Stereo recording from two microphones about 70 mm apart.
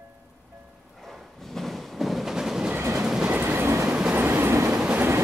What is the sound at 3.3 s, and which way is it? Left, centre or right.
Train, right.